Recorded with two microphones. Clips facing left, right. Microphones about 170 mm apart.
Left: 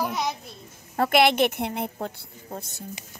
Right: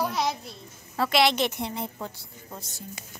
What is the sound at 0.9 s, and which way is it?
A woman's voice, 50° left (ahead or behind).